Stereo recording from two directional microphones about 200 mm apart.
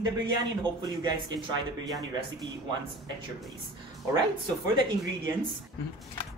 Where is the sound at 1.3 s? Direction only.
25° right (ahead or behind).